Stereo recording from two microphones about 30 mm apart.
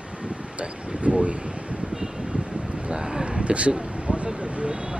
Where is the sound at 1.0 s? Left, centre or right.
Right.